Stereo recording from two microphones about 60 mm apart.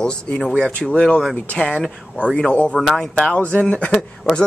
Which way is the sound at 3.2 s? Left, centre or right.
Centre.